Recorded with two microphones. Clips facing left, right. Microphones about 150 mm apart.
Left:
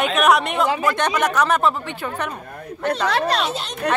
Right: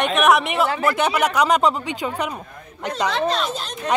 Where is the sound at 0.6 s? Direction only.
15° left (ahead or behind).